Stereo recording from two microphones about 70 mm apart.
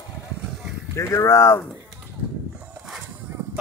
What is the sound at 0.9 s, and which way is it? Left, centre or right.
Speech, left.